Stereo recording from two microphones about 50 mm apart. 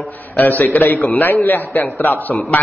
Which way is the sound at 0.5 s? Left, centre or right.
Left.